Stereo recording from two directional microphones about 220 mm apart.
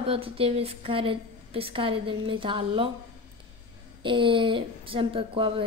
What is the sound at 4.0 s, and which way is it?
Speech, 25° right (ahead or behind).